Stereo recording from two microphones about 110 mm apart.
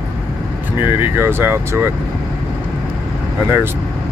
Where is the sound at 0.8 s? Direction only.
20° right (ahead or behind).